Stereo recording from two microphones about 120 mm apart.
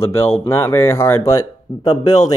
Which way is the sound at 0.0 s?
25° left (ahead or behind).